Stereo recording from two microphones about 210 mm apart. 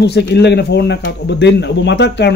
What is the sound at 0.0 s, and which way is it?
A man's voice, 50° left (ahead or behind).